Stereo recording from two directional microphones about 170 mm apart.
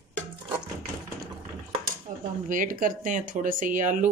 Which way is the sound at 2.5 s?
55° right (ahead or behind).